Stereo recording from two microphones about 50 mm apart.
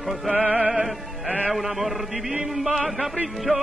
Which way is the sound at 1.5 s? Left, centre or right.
Centre.